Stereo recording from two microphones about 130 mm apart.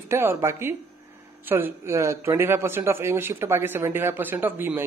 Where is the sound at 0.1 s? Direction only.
20° right (ahead or behind).